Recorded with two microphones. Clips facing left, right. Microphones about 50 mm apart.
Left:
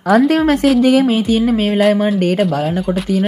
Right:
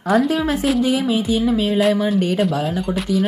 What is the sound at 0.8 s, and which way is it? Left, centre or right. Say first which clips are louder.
Speech: left 7 dB; left.